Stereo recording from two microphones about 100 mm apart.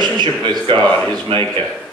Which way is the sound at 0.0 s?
45° right (ahead or behind).